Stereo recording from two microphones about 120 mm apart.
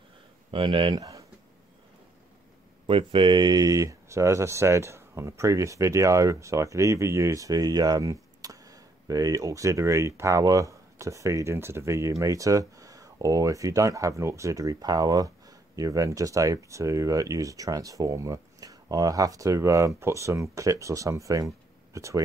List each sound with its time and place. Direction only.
0.5 s speech: 45° right (ahead or behind)
0.9 s speech: 30° right (ahead or behind)
2.9 s speech: 50° right (ahead or behind); by 22.2 s 25° right (ahead or behind)